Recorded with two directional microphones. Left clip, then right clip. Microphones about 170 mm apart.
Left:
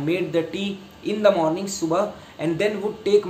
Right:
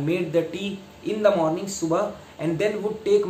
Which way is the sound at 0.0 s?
15° left (ahead or behind).